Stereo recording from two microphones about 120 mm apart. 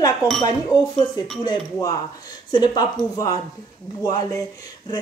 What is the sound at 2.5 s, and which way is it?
Speech, 40° left (ahead or behind).